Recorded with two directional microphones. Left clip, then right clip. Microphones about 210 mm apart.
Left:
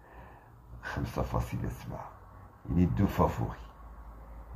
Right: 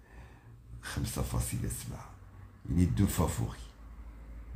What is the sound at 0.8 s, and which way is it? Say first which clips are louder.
Speech: left 4 dB; centre (ahead or behind).